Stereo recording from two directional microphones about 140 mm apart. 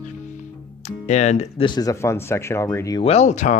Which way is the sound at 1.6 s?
30° left (ahead or behind).